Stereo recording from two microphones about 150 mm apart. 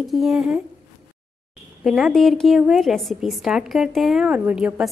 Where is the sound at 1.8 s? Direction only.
Centre (ahead or behind).